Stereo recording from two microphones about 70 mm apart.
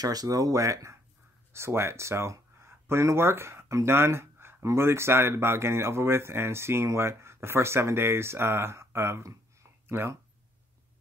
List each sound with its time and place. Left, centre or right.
0.0 s speech: right
1.5 s speech: right